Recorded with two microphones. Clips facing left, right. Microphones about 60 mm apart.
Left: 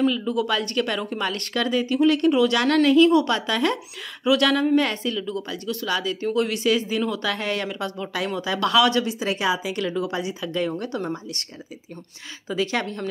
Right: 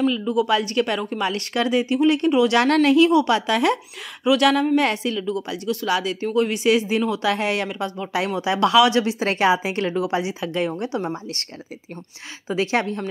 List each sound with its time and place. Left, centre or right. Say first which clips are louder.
0.0 s speech: right 2 dB; centre
4.2 s speech: right 2 dB; centre
4.7 s speech: right 1 dB; centre
6.3 s speech: right 4 dB; centre
9.0 s speech: right 4 dB; right; by 11.1 s centre
12.4 s speech: right 3 dB; right